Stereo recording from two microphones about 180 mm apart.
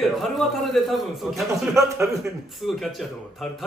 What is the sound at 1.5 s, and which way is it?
Speech, 15° right (ahead or behind).